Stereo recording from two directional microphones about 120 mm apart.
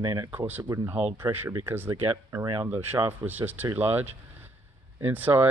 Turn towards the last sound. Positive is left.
turn(degrees=-15)  # may be behind; listen again after turning